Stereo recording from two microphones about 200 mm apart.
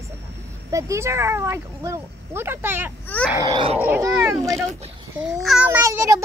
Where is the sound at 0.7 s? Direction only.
15° right (ahead or behind).